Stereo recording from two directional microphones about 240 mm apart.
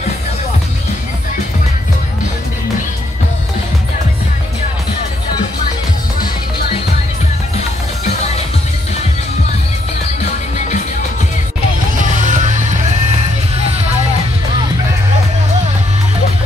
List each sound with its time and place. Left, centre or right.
12.0 s music: right